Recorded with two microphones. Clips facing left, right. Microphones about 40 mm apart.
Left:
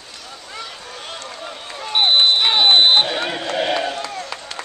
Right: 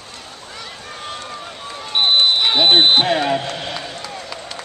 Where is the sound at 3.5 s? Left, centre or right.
Left.